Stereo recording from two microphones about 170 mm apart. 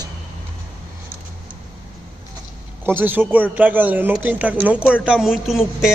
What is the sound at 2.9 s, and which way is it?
Speech, 10° right (ahead or behind).